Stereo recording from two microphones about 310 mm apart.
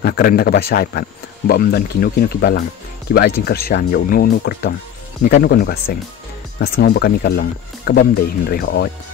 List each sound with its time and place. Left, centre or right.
0.0 s speech: left